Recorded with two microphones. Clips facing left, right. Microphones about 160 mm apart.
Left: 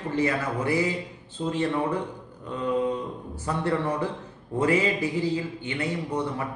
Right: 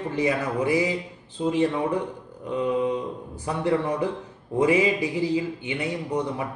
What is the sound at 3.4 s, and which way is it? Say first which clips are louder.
Speech: right 2 dB; 15° right (ahead or behind).